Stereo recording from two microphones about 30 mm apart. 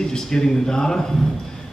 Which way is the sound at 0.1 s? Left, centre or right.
Left.